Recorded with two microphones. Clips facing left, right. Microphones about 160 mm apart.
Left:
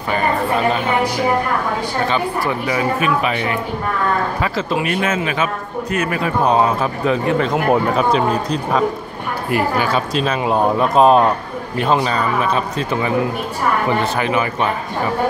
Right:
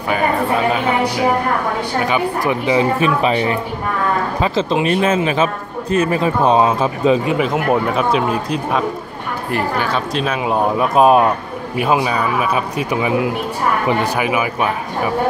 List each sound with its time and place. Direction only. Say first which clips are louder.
2.0 s a man's voice: right 2 dB; 15° right (ahead or behind)
7.4 s speech: left 1 dB; centre (ahead or behind)
9.5 s a man's voice: left 2 dB; 5° left (ahead or behind); by 14.7 s 10° right (ahead or behind)